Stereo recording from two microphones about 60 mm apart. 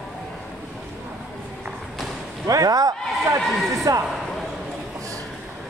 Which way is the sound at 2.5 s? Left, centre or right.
Right.